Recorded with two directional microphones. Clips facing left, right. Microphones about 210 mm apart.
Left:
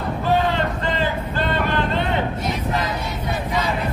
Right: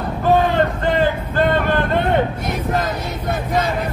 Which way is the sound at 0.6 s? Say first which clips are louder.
Right 6 dB; 50° right (ahead or behind).